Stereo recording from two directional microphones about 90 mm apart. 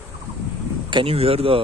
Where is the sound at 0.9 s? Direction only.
90° right.